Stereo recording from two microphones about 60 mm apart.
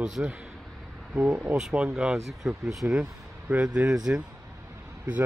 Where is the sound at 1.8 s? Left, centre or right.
Centre.